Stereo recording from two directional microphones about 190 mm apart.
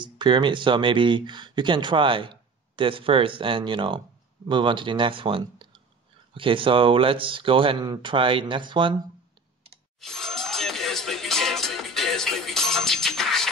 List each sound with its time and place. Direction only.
0.0 s speech: 25° right (ahead or behind)
9.9 s music: centre (ahead or behind)